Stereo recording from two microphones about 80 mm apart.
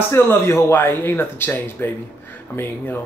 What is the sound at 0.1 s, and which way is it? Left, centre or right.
Speech, left.